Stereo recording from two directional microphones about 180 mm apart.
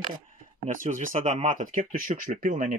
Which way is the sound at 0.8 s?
45° right (ahead or behind).